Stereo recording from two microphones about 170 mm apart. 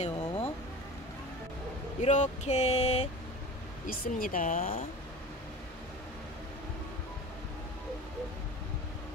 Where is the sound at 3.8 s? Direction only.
55° left (ahead or behind).